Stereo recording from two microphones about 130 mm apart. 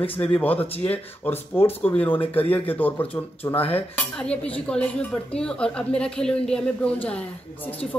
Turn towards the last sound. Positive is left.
turn(degrees=10)  # may be behind; listen again after turning